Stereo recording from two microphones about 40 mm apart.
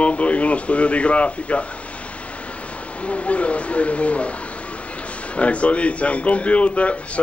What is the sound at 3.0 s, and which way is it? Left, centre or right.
Speech, left.